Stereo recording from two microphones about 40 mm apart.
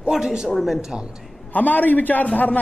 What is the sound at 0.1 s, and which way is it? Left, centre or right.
Speech, centre.